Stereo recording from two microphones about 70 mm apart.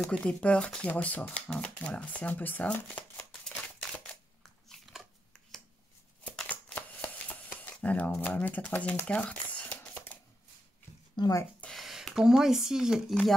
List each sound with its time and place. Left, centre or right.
0.0 s speech: centre
4.4 s biting: centre
6.5 s shuffling cards: left
7.7 s speech: left
9.0 s a sound: centre
11.2 s speech: left
11.7 s speech: centre